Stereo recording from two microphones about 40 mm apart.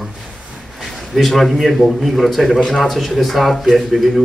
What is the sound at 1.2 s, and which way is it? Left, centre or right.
Speech, centre.